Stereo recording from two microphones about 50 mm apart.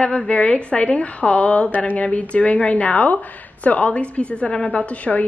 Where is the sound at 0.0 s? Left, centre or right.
Left.